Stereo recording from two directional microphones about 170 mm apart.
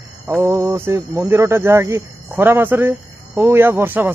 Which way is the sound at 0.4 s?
20° right (ahead or behind).